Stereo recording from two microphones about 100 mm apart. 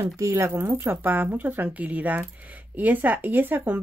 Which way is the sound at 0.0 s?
30° right (ahead or behind).